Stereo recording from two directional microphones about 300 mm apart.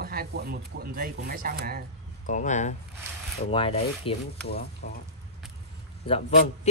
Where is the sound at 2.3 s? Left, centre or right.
Left.